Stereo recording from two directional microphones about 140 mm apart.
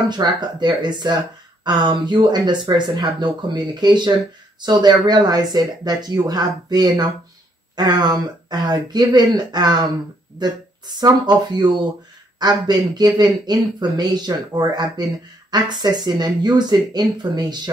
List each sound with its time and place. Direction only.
0.1 s speech: 30° right (ahead or behind)